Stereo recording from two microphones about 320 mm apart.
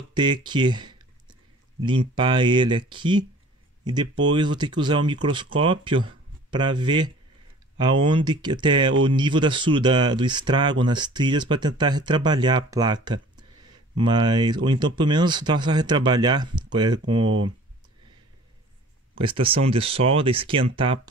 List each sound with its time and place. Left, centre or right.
0.1 s speech: centre
19.1 s speech: centre